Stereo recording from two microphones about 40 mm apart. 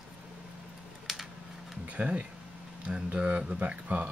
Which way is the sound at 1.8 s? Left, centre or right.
Right.